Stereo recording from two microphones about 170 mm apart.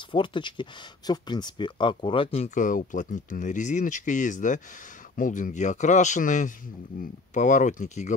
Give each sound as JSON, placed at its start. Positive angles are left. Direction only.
{"t": 0.1, "sound": "speech", "side_deg": 30}